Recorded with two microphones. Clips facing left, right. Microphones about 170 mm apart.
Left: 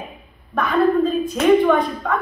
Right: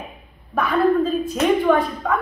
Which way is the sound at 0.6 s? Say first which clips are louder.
Left 1 dB; 5° right (ahead or behind).